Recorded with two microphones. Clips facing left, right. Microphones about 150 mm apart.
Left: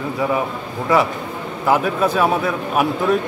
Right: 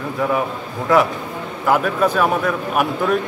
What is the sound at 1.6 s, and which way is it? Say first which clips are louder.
A man's voice: even; 5° left (ahead or behind).